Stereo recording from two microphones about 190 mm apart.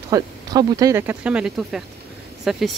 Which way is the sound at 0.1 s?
20° right (ahead or behind).